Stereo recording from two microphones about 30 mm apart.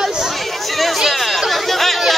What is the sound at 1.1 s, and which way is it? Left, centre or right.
Chatter, centre.